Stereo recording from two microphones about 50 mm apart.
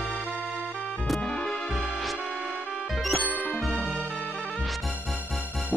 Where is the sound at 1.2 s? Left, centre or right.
Centre.